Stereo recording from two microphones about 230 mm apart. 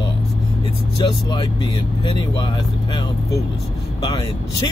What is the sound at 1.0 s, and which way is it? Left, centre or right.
Speech, centre.